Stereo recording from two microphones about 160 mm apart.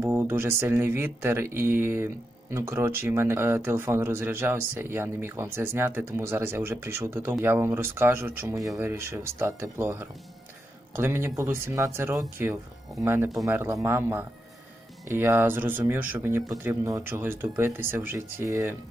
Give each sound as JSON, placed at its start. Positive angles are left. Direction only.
{"t": 0.0, "sound": "speech", "side_deg": -15}